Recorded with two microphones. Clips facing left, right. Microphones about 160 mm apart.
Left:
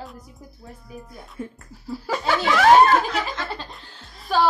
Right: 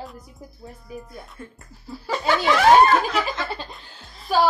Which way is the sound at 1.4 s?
10° left (ahead or behind).